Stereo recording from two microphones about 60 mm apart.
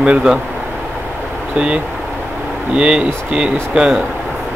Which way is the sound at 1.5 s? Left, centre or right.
Centre.